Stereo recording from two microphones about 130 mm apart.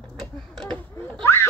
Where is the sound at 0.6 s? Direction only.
5° left (ahead or behind).